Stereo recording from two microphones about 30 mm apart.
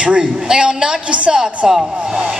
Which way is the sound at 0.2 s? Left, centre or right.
Right.